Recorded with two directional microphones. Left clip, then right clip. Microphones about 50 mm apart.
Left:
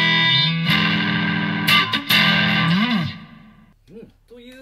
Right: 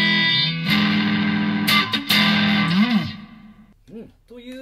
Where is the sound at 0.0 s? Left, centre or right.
Left.